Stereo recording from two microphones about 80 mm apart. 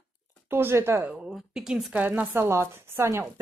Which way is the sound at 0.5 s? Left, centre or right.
Right.